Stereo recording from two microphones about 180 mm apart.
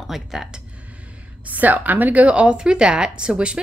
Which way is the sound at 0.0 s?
Centre (ahead or behind).